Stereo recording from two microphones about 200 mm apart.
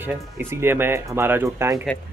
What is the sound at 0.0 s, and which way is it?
Speech, 10° right (ahead or behind).